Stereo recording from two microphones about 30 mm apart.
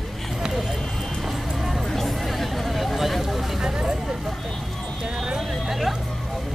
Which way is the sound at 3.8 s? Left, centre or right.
Centre.